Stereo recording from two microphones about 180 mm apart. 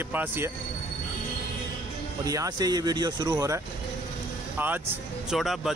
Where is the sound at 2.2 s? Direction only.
20° right (ahead or behind).